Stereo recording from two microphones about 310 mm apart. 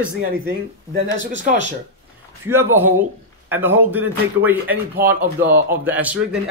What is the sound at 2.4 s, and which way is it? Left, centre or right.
Speech, centre.